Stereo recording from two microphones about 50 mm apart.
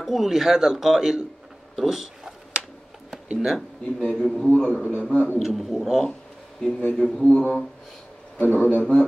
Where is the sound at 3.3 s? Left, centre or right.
Centre.